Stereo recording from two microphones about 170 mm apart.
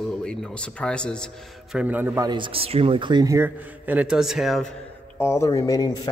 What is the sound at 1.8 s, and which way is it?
Speech, 10° right (ahead or behind).